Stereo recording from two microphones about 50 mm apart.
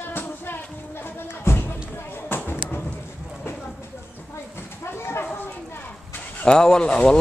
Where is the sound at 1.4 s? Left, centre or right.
Left.